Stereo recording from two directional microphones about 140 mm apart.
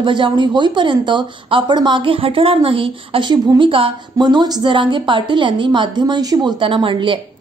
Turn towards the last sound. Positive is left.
turn(degrees=-35)  # may be behind; listen again after turning